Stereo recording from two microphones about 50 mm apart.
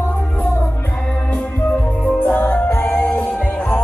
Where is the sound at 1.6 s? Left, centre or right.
Left.